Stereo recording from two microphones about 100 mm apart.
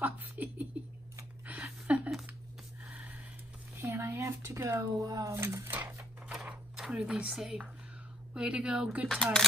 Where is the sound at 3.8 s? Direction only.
25° right (ahead or behind).